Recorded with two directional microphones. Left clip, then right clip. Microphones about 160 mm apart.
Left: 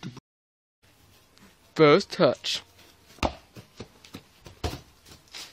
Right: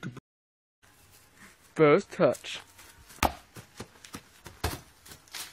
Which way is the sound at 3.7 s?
5° right (ahead or behind).